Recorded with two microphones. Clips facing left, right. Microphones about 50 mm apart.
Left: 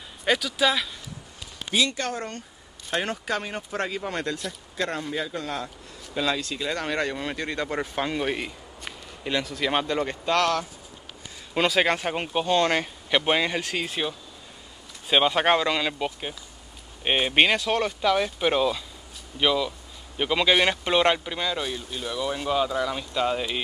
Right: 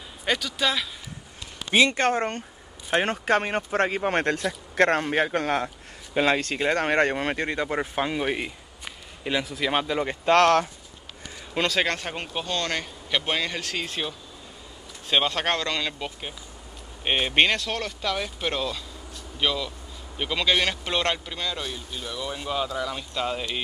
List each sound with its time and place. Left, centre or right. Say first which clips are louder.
0.2 s speech: left 3 dB; centre
1.7 s speech: right 5 dB; right
4.7 s a man's voice: right 8 dB; right
7.4 s speech: right 2 dB; centre
10.2 s speech: right 7 dB; right
11.5 s speech: left 2 dB; centre